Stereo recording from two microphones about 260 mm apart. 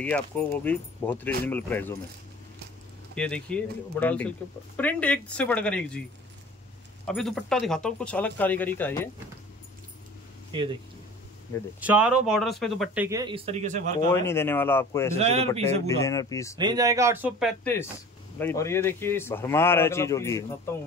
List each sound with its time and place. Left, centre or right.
0.0 s speech: centre
3.2 s speech: centre
7.1 s speech: centre
10.5 s speech: centre
11.8 s speech: centre; by 13.9 s right
13.9 s speech: centre
15.1 s speech: right
15.9 s speech: centre
16.5 s speech: centre
18.4 s speech: centre